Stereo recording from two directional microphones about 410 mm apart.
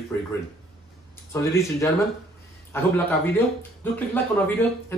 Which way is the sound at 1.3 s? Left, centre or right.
Centre.